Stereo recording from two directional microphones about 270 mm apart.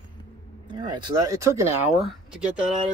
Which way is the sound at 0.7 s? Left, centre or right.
Centre.